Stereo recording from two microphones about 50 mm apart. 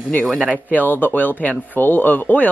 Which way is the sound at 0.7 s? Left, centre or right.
Left.